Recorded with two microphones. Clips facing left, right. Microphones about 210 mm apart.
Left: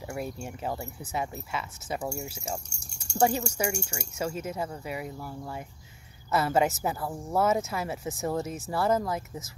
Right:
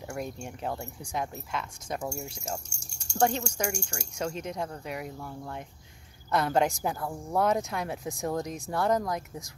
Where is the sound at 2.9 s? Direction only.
60° left (ahead or behind).